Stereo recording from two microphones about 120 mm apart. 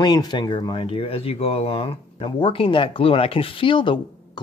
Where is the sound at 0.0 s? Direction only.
35° left (ahead or behind).